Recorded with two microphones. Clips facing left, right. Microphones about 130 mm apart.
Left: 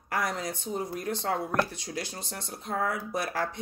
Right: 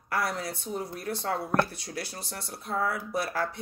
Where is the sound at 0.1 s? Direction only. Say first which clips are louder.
Even; 20° left (ahead or behind).